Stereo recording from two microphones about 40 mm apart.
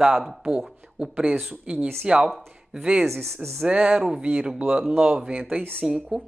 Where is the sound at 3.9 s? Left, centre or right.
Centre.